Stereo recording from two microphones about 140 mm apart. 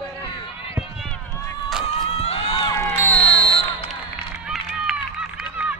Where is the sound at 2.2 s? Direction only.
45° left (ahead or behind).